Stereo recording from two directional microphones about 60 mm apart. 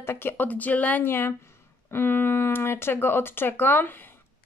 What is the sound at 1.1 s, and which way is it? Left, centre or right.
Speech, left.